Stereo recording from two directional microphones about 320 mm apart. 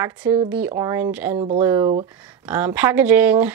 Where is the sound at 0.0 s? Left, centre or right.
Centre.